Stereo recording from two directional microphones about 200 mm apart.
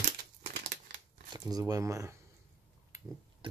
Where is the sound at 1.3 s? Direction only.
20° right (ahead or behind).